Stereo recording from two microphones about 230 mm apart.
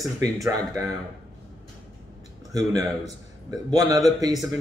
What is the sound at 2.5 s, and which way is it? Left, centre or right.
Speech, centre.